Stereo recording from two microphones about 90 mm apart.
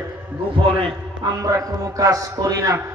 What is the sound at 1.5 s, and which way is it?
A man's voice, 40° right (ahead or behind).